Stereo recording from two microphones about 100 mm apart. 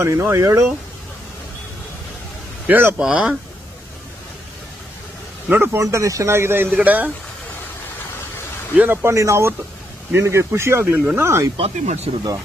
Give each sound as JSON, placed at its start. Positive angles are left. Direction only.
{"t": 0.0, "sound": "a man's voice", "side_deg": -25}
{"t": 2.6, "sound": "a man's voice", "side_deg": -20}
{"t": 5.5, "sound": "a man's voice", "side_deg": -25}
{"t": 8.7, "sound": "a man's voice", "side_deg": -20}
{"t": 9.1, "sound": "a man's voice", "side_deg": -30}
{"t": 11.5, "sound": "speech", "side_deg": -90}